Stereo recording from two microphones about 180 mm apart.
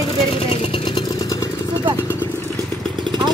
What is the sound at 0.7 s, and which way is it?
Vehicle, 25° left (ahead or behind).